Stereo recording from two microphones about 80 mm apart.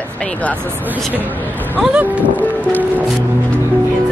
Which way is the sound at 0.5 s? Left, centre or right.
Right.